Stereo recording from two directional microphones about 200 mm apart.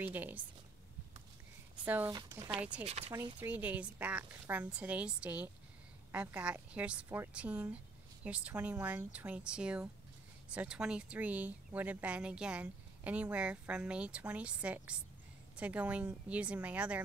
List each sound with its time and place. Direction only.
0.0 s speech: 10° right (ahead or behind)
1.9 s speech: 10° right (ahead or behind)
2.8 s speech: 30° right (ahead or behind)
3.3 s speech: 10° right (ahead or behind)